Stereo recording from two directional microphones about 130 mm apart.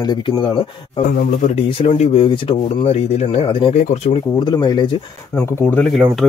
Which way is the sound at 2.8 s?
50° left (ahead or behind).